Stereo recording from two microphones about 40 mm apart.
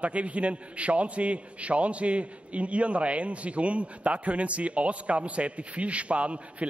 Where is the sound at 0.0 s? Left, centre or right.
Right.